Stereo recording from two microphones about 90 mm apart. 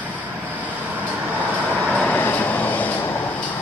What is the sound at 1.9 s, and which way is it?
Vehicle, 10° left (ahead or behind).